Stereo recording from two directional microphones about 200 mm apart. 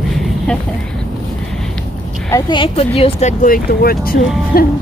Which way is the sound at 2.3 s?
25° left (ahead or behind).